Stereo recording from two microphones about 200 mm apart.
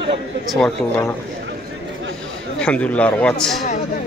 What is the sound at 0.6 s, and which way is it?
Speech, 10° left (ahead or behind).